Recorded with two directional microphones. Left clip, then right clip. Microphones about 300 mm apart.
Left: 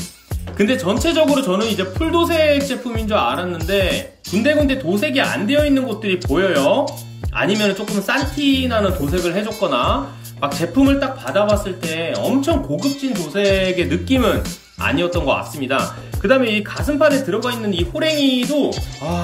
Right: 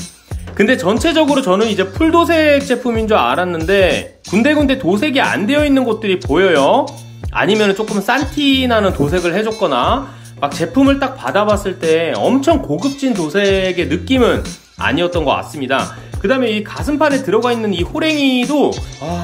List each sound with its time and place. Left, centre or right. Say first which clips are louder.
0.6 s speech: right 5 dB; centre